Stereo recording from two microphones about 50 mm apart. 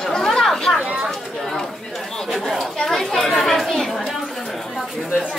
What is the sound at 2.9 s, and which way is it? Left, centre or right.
Chatter, centre.